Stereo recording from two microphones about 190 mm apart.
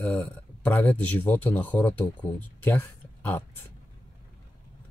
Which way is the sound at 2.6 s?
10° left (ahead or behind).